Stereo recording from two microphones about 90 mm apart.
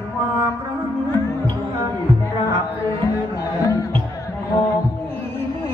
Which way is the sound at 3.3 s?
40° left (ahead or behind).